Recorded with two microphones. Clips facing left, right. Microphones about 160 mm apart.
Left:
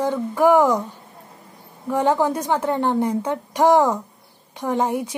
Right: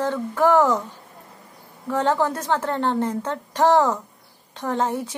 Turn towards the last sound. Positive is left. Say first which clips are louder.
# left 2 dB
turn(degrees=15)  # may be behind; listen again after turning